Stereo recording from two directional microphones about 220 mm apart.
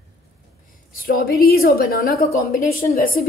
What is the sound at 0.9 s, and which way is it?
A woman's voice, 40° left (ahead or behind).